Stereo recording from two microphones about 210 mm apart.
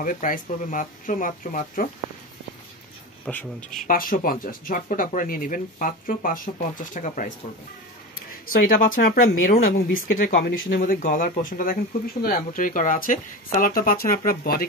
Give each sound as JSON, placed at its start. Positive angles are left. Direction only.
{"t": 0.0, "sound": "speech", "side_deg": 40}
{"t": 3.3, "sound": "speech", "side_deg": 5}
{"t": 3.7, "sound": "speech", "side_deg": 40}